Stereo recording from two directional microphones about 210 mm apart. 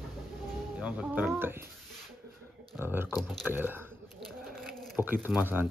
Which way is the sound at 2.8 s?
10° right (ahead or behind).